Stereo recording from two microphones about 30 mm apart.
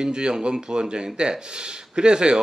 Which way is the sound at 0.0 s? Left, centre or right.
Right.